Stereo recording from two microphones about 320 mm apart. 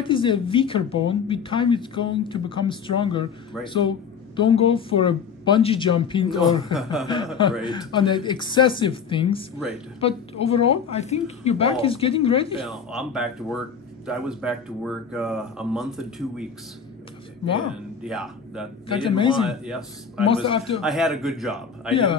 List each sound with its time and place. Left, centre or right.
0.0 s speech: centre
6.7 s speech: centre
7.6 s speech: centre
12.6 s speech: centre
18.0 s speech: centre
18.9 s speech: centre
19.4 s speech: centre
20.2 s speech: centre
20.8 s speech: centre